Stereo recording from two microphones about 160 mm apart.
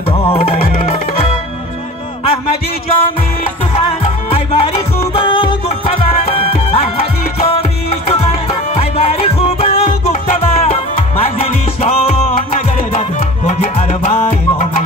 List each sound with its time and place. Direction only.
2.2 s music: 40° left (ahead or behind)